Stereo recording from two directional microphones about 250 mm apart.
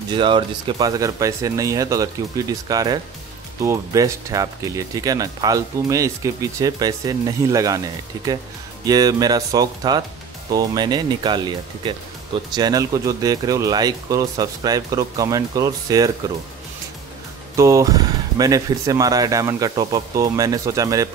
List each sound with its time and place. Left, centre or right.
0.1 s speech: centre
17.6 s speech: centre